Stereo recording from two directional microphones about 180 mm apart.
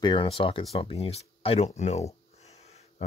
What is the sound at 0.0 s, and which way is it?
Speech, 30° left (ahead or behind).